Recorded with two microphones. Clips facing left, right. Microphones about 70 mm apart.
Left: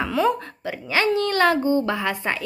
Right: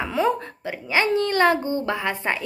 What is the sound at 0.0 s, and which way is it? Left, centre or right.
Speech, right.